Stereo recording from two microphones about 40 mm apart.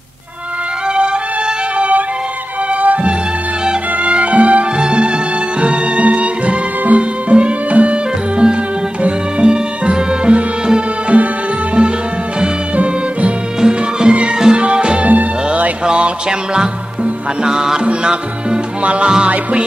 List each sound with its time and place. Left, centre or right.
1.8 s music: right
4.7 s music: right
12.7 s music: right
13.6 s music: centre
15.0 s music: right
15.8 s music: right